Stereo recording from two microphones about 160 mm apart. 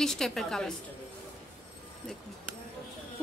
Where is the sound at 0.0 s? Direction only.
5° left (ahead or behind).